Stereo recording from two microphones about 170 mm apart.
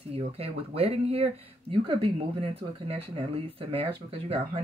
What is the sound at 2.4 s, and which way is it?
Speech, 35° right (ahead or behind).